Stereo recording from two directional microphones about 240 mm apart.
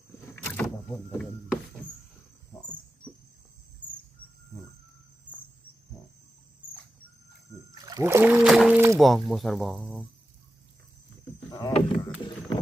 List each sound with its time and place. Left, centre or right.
0.5 s vehicle: centre
7.7 s speech: centre
11.5 s a sound: left